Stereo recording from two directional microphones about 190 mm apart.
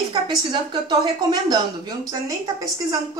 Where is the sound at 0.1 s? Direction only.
25° right (ahead or behind).